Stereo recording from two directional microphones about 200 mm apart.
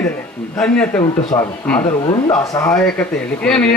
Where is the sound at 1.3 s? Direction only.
20° left (ahead or behind).